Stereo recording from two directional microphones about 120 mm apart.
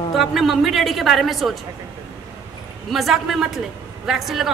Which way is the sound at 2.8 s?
Centre (ahead or behind).